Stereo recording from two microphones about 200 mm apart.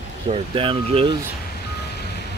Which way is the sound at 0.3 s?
25° right (ahead or behind).